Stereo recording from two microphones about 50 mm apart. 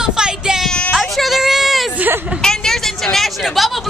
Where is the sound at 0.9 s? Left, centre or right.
Centre.